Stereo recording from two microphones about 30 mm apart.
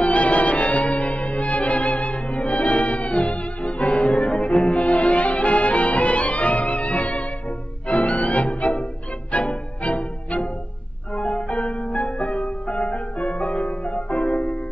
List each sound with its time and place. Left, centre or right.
0.0 s music: left
4.8 s music: left